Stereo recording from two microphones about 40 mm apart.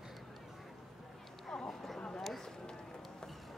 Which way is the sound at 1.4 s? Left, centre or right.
Centre.